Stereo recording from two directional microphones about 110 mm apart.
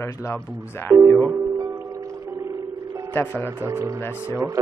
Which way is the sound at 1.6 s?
30° right (ahead or behind).